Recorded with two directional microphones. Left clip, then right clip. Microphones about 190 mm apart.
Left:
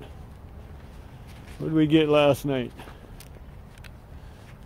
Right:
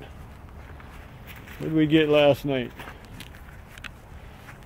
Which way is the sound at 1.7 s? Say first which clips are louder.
Even; 5° left (ahead or behind).